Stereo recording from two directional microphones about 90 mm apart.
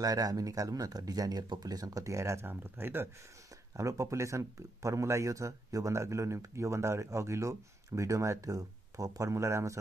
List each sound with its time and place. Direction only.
0.0 s speech: 45° right (ahead or behind); by 3.1 s 25° right (ahead or behind)
3.7 s speech: 35° right (ahead or behind)